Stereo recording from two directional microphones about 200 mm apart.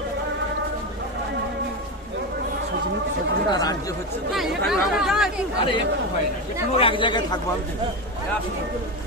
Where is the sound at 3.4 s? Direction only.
20° left (ahead or behind).